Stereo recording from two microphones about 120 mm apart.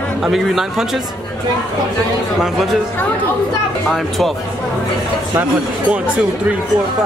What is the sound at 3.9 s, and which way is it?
Speech, centre (ahead or behind).